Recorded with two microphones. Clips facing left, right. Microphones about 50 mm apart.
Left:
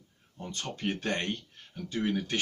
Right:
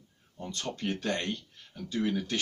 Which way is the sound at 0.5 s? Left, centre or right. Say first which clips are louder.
Even; centre.